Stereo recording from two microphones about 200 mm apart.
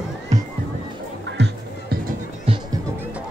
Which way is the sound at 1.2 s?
60° right (ahead or behind).